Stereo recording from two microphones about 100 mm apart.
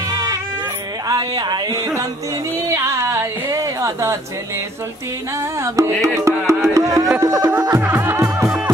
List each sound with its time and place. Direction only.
0.1 s a sound: 40° right (ahead or behind)
1.0 s speech: 40° right (ahead or behind)
2.5 s a sound: 25° right (ahead or behind)
5.4 s music: 30° right (ahead or behind)
7.8 s music: 20° right (ahead or behind)
8.5 s music: 10° right (ahead or behind)